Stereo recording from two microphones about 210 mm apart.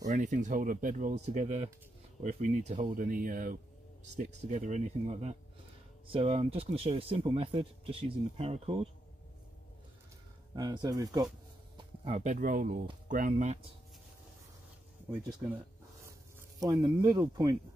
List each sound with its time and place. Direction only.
0.0 s speech: 35° right (ahead or behind)
10.5 s speech: 20° right (ahead or behind)
11.7 s speech: 30° right (ahead or behind)
16.3 s speech: 15° right (ahead or behind)